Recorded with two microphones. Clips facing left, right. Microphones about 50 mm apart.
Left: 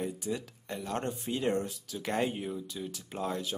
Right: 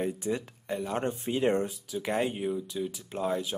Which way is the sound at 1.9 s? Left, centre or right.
Centre.